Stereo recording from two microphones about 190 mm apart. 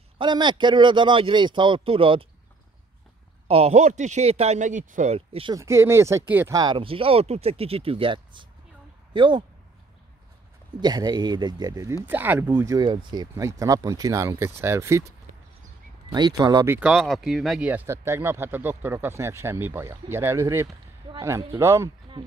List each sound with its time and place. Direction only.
0.2 s speech: 25° right (ahead or behind)
3.4 s speech: 30° right (ahead or behind)
5.6 s speech: 15° right (ahead or behind)
10.8 s speech: 20° right (ahead or behind)
16.7 s speech: 5° right (ahead or behind)